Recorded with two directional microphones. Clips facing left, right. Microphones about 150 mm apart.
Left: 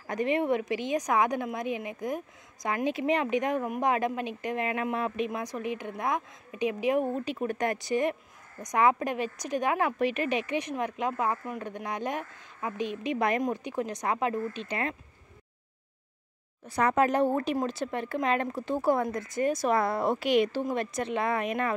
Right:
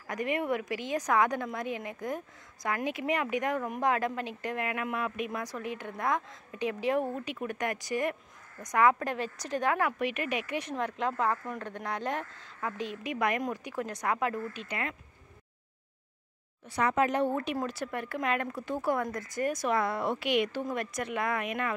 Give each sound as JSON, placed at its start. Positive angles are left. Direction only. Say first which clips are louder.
{"t": 0.0, "sound": "a woman's voice", "louder": "left 4 dB", "side_deg": 25}
{"t": 7.2, "sound": "a woman's voice", "louder": "left 4 dB", "side_deg": 30}
{"t": 9.9, "sound": "a woman's voice", "louder": "left 4 dB", "side_deg": 30}
{"t": 16.6, "sound": "speech", "louder": "left 3 dB", "side_deg": 45}
{"t": 17.6, "sound": "a woman's voice", "louder": "left 3 dB", "side_deg": 25}